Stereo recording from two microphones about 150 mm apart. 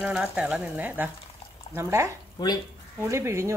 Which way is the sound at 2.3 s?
25° left (ahead or behind).